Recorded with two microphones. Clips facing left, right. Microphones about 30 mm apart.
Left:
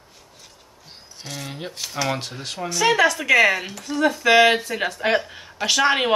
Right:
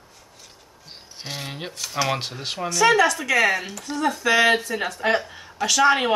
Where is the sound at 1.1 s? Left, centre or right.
Right.